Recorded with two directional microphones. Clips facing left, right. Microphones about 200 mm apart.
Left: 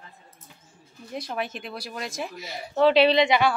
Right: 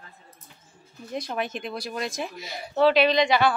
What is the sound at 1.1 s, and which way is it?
A woman's voice, 5° left (ahead or behind).